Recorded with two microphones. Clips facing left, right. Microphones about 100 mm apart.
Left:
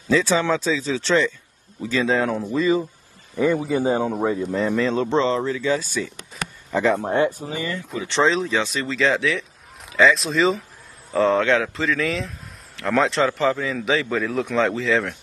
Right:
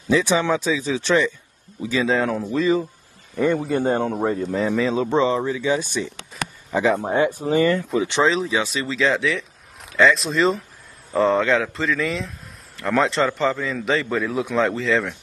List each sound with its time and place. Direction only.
0.1 s speech: 15° right (ahead or behind)
2.0 s speech: centre (ahead or behind); by 6.0 s 20° right (ahead or behind)
6.4 s a sound: centre (ahead or behind)
6.7 s speech: 10° right (ahead or behind)
7.5 s speech: 60° right (ahead or behind)
8.2 s speech: centre (ahead or behind)